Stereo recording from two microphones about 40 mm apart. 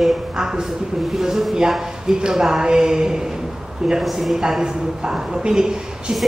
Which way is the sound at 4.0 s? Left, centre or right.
Centre.